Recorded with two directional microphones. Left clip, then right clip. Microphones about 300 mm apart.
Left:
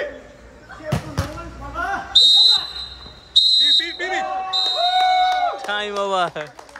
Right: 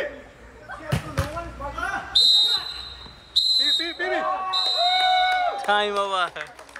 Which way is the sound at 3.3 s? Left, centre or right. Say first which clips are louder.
Left 6 dB; centre.